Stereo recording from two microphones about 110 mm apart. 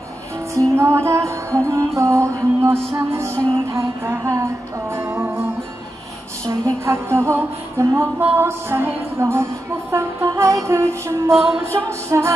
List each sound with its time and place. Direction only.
0.6 s music: 25° right (ahead or behind)
11.3 s music: 5° right (ahead or behind)
11.6 s music: 25° right (ahead or behind)